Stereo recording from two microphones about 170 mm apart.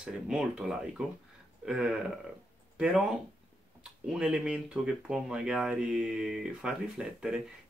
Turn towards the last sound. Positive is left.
turn(degrees=-5)  # may be behind; listen again after turning